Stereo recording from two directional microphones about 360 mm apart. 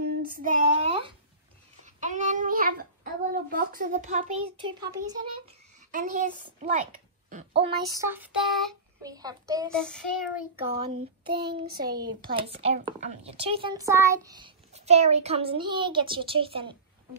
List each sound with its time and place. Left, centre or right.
0.0 s child singing: right
0.8 s a sound: centre
2.0 s a child's voice: centre
5.9 s a woman's voice: right
7.2 s child singing: centre
9.0 s a child's voice: centre
9.7 s child singing: centre
10.8 s a child's voice: centre